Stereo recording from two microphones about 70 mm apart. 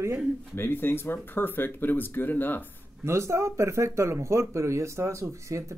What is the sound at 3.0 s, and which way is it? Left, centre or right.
Speech, right.